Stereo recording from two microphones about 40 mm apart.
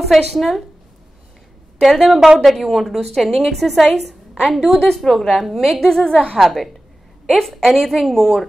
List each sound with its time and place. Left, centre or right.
0.0 s a woman's voice: centre
1.8 s a woman's voice: centre
2.1 s a woman's voice: centre
2.4 s a woman's voice: centre
4.8 s a woman's voice: centre
5.1 s a woman's voice: centre
5.9 s a woman's voice: centre
6.3 s a woman's voice: centre